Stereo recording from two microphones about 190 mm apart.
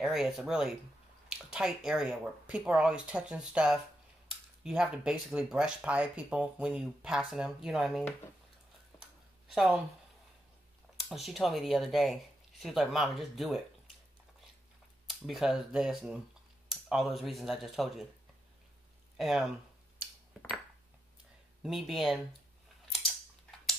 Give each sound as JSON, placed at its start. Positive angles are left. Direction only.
{"t": 0.0, "sound": "speech", "side_deg": 0}
{"t": 9.5, "sound": "speech", "side_deg": 0}
{"t": 11.0, "sound": "speech", "side_deg": 0}
{"t": 15.0, "sound": "speech", "side_deg": 0}
{"t": 19.1, "sound": "speech", "side_deg": 0}
{"t": 21.6, "sound": "speech", "side_deg": 0}